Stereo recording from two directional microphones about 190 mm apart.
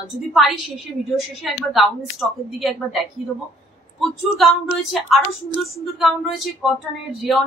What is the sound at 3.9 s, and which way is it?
A woman's voice, centre (ahead or behind).